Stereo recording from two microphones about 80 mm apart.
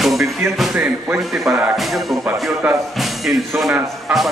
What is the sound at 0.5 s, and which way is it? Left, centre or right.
Speech, centre.